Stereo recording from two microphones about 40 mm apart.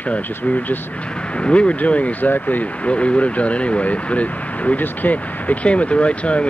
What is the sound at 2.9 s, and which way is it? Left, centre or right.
Speech, left.